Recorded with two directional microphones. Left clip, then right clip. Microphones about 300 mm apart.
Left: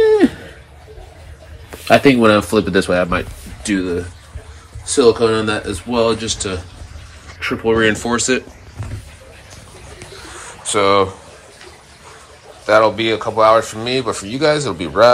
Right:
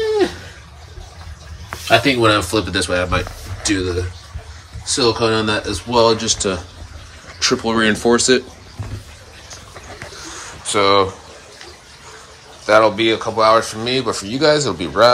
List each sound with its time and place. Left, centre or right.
1.9 s speech: centre
4.9 s speech: centre
10.2 s a sound: centre
12.6 s speech: centre